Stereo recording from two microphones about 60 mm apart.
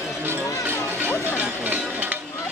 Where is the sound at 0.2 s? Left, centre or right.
Right.